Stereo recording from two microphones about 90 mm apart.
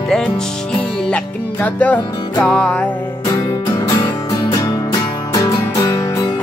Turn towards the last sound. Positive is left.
turn(degrees=40)  # may be behind; listen again after turning